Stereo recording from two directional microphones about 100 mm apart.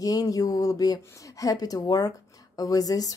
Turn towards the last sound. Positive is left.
turn(degrees=40)  # may be behind; listen again after turning